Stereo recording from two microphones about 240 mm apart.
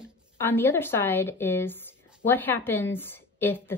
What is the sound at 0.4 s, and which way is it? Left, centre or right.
A woman's voice, centre.